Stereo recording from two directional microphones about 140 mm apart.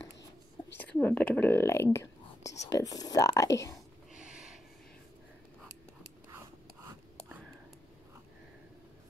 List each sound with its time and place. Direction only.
0.7 s speech: 10° left (ahead or behind)
4.1 s snort: 5° right (ahead or behind)